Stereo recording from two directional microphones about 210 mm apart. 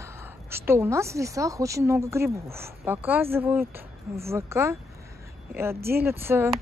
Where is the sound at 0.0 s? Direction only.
10° right (ahead or behind).